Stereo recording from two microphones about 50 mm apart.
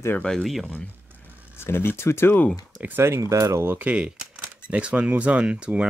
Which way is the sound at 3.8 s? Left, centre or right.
Right.